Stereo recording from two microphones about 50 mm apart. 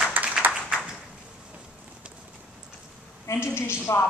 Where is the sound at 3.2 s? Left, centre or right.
Left.